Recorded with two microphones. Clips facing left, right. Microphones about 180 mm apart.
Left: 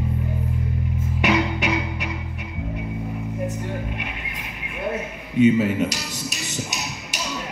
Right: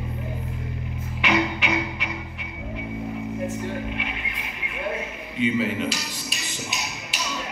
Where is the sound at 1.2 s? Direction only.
45° left (ahead or behind).